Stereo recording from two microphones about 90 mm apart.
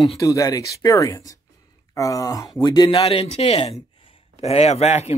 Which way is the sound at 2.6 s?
50° left (ahead or behind).